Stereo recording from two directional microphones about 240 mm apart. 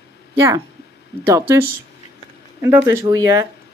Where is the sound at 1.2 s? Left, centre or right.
Centre.